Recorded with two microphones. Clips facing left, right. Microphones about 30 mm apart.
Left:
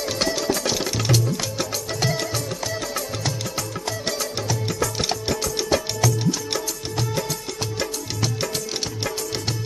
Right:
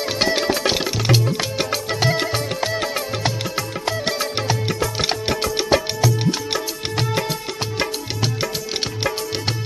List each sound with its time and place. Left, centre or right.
0.2 s music: right
7.8 s music: right